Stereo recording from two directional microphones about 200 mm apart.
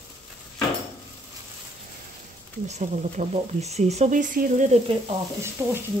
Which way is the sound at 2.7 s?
35° right (ahead or behind).